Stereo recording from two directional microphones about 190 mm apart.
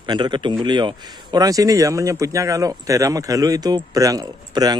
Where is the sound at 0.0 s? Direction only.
25° right (ahead or behind).